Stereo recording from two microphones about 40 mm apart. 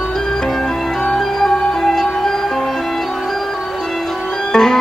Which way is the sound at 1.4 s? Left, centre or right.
Centre.